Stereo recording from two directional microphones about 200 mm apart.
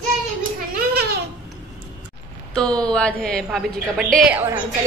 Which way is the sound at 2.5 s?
5° left (ahead or behind).